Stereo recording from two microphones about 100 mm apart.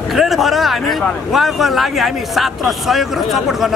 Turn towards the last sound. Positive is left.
turn(degrees=0)  # may be behind; listen again after turning